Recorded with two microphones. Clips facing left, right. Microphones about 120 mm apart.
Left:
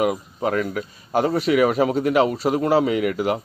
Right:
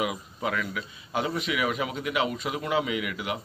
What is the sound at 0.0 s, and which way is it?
A man's voice, 45° left (ahead or behind).